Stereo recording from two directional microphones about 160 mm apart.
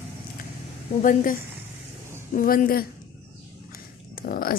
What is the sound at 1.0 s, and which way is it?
Speech, 55° left (ahead or behind).